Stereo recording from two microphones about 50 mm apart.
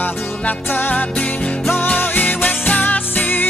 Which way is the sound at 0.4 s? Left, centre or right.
Left.